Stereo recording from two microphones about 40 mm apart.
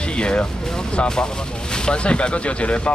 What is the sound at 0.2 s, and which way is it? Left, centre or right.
Speech, left.